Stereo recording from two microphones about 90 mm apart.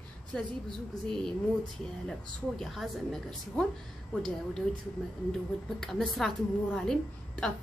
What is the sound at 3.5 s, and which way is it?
A woman's voice, 10° left (ahead or behind).